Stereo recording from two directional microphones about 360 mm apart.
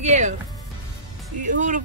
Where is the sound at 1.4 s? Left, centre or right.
Right.